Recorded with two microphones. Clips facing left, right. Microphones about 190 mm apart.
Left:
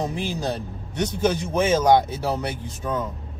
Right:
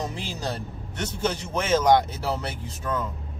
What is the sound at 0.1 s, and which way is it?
A man's voice, 15° left (ahead or behind).